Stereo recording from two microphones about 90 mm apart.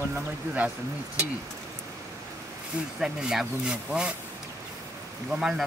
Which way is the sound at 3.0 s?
5° right (ahead or behind).